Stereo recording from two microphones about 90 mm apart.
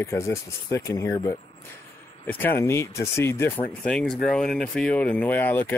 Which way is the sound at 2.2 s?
20° left (ahead or behind).